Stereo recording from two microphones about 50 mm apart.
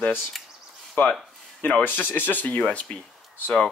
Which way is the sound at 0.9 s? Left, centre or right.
Left.